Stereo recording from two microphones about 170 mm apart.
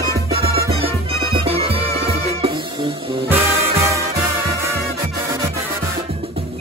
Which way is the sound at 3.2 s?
15° right (ahead or behind).